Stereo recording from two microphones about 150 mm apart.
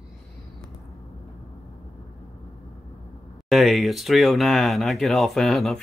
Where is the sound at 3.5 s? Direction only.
Centre (ahead or behind).